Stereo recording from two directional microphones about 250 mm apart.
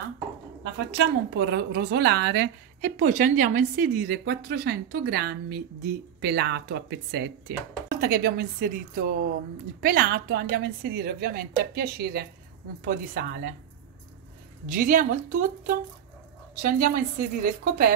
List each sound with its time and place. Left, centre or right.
0.9 s a woman's voice: right
14.7 s a woman's voice: right
16.6 s a woman's voice: right